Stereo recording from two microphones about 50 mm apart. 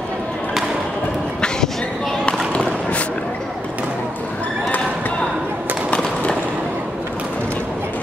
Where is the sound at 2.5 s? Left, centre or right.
Left.